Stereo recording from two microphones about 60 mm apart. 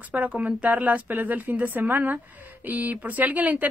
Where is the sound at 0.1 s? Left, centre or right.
Right.